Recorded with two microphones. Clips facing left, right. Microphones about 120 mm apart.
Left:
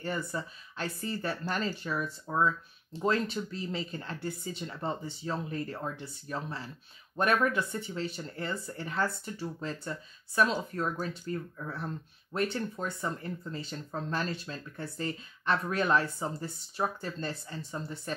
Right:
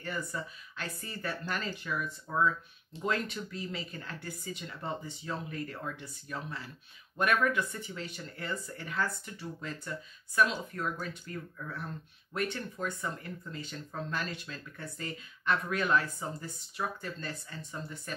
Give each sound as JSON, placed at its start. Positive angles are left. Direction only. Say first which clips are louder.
{"t": 0.0, "sound": "speech", "louder": "left 3 dB", "side_deg": 30}